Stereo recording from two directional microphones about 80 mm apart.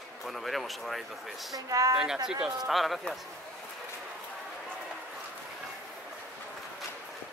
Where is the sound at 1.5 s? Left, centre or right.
Right.